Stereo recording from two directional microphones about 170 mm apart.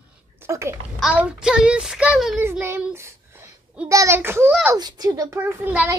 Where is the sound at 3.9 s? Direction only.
15° right (ahead or behind).